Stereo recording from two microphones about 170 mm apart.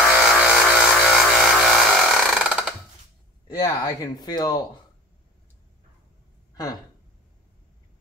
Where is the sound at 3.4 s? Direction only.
25° left (ahead or behind).